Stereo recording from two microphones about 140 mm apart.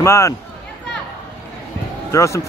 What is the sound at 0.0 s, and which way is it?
Speech, 20° left (ahead or behind).